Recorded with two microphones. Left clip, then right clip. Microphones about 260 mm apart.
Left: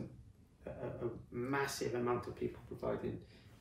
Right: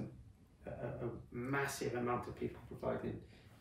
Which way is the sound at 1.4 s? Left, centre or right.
Centre.